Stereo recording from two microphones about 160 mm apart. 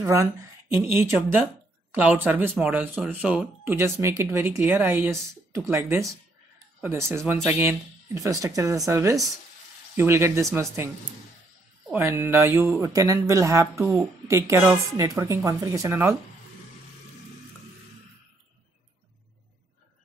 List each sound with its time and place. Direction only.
0.0 s a woman's voice: 20° right (ahead or behind)
11.9 s a woman's voice: 15° right (ahead or behind)